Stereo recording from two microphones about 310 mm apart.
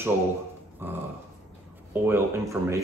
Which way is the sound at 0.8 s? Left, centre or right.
Centre.